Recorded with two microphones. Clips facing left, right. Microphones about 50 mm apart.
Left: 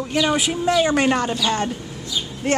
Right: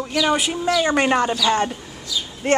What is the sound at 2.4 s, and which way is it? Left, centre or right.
Speech, centre.